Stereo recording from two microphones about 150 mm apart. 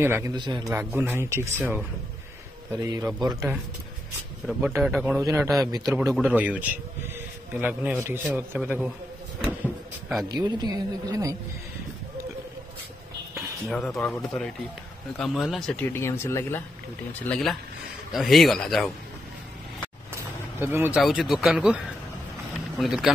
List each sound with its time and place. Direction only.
0.0 s a man's voice: 15° right (ahead or behind)
0.3 s speech: 30° right (ahead or behind)
0.7 s a man's voice: 15° right (ahead or behind)
2.8 s speech: 30° right (ahead or behind)
4.5 s speech: centre (ahead or behind)
5.2 s a man's voice: 15° right (ahead or behind)
6.1 s a man's voice: 10° right (ahead or behind)
9.6 s drawer open or close: centre (ahead or behind)
10.2 s speech: 30° right (ahead or behind)
13.7 s speech: 5° left (ahead or behind)
17.3 s speech: 5° left (ahead or behind)
20.5 s speech: 15° right (ahead or behind)
21.0 s speech: centre (ahead or behind)